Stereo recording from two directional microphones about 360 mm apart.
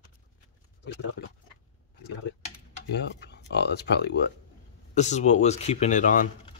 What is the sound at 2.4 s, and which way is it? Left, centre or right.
Typing, left.